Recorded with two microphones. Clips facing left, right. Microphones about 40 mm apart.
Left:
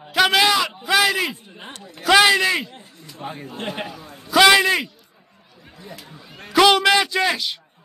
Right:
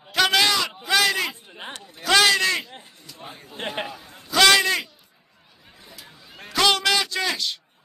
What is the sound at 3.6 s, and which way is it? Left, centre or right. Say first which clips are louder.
Speech: even; centre.